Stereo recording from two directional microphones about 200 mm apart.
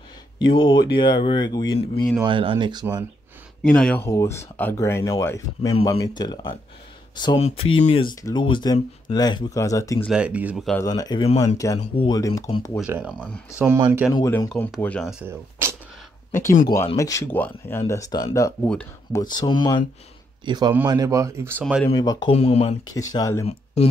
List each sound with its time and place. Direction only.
0.5 s speech: 25° left (ahead or behind)
2.2 s speech: 25° right (ahead or behind)
3.6 s speech: 5° left (ahead or behind)
10.0 s speech: 5° right (ahead or behind)
10.8 s speech: 20° left (ahead or behind)
14.5 s speech: 5° left (ahead or behind)
16.3 s speech: 15° left (ahead or behind)
18.7 s speech: 5° left (ahead or behind)
19.3 s speech: 20° left (ahead or behind)
20.4 s speech: 20° right (ahead or behind)
21.9 s speech: 20° left (ahead or behind)
23.1 s speech: 15° left (ahead or behind)
23.4 s speech: 30° left (ahead or behind)